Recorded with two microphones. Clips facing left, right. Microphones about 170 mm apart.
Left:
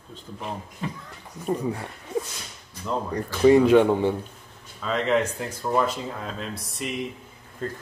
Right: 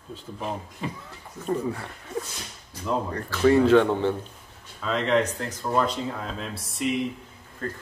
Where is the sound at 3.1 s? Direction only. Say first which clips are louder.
Left 4 dB; 15° left (ahead or behind).